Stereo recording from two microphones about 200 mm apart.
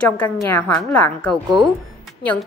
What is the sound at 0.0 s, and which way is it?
A woman's voice, 10° left (ahead or behind).